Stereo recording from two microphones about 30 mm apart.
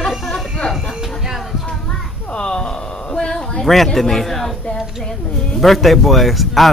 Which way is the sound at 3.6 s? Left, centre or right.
Centre.